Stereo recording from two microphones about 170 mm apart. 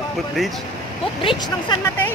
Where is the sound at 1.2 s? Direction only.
30° left (ahead or behind).